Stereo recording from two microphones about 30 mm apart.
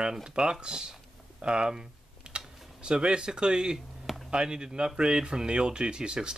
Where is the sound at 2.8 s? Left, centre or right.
Right.